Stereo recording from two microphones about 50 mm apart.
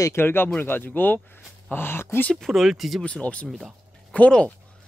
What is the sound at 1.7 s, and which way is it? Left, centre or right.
Speech, left.